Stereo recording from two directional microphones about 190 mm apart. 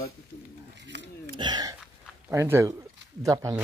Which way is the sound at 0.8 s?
65° right (ahead or behind).